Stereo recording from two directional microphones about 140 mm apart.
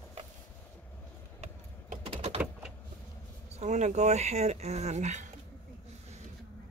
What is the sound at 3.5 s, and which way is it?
Speech, 55° right (ahead or behind).